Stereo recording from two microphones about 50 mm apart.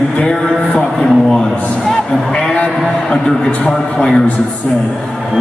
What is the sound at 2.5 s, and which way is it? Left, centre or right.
A man's voice, left.